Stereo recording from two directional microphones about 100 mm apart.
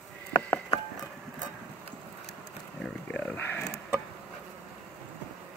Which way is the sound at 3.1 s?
15° left (ahead or behind).